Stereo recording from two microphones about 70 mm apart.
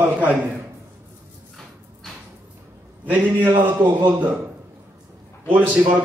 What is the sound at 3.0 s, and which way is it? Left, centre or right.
Speech, right.